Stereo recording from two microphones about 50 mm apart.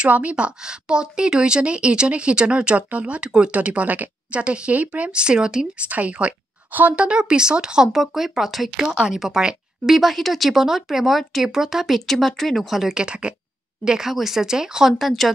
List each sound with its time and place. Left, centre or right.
0.1 s speech: right
5.8 s speech: right
7.1 s speech: centre
7.9 s speech: centre
8.8 s speech: centre
9.9 s speech: centre
12.1 s speech: centre
12.9 s speech: right
13.8 s speech: centre
14.9 s speech: centre